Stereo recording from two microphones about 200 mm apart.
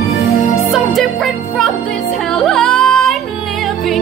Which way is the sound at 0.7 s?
Centre (ahead or behind).